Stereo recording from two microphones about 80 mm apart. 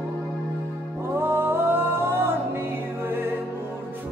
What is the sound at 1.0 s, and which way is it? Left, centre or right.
Music, right.